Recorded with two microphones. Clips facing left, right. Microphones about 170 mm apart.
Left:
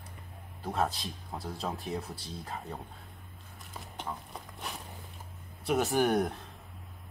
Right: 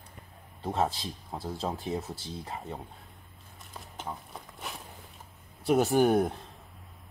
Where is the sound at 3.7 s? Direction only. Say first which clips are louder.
Even; centre (ahead or behind).